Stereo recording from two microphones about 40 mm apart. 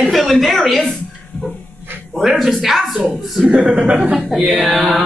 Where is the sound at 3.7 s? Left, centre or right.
Right.